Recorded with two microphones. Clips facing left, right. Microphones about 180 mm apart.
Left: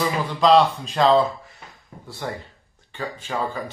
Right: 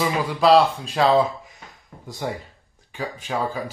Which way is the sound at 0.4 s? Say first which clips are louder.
Even; 5° right (ahead or behind).